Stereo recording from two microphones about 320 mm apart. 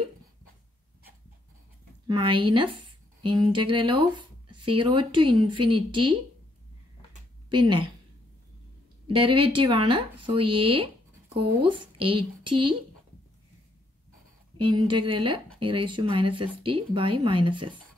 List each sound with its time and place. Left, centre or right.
2.0 s speech: centre
7.4 s speech: centre
9.0 s speech: centre
14.6 s speech: centre